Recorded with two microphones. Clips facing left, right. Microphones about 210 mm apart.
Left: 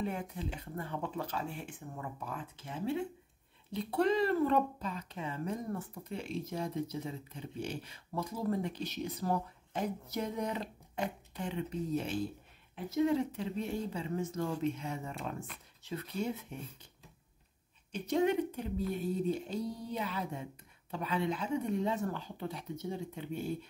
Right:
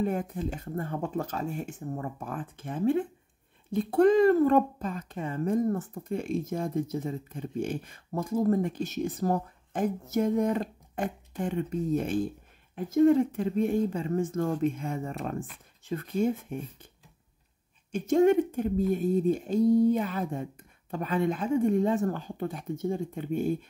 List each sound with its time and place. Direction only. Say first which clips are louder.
0.0 s speech: right 8 dB; 45° right (ahead or behind)
17.9 s speech: right 8 dB; 45° right (ahead or behind)